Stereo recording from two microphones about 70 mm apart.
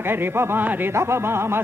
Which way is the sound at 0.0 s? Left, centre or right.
Right.